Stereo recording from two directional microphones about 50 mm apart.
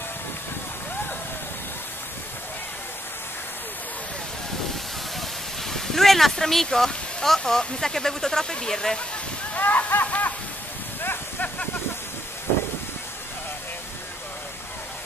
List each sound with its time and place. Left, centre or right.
5.7 s speech: centre
9.5 s speech: left
11.0 s a sound: left